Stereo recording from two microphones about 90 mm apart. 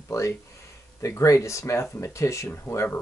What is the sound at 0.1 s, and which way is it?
Speech, 30° left (ahead or behind).